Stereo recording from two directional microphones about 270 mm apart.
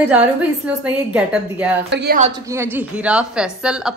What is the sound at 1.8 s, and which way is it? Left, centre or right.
Speech, right.